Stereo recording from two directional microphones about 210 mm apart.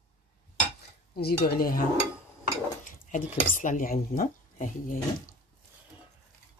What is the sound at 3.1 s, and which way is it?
Speech, 40° left (ahead or behind).